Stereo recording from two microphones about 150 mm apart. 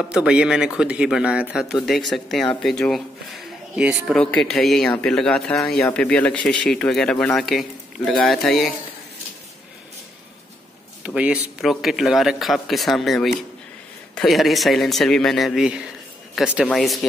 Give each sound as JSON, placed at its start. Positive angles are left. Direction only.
{"t": 0.0, "sound": "speech", "side_deg": -5}
{"t": 4.2, "sound": "speech", "side_deg": 5}
{"t": 11.1, "sound": "a man's voice", "side_deg": -10}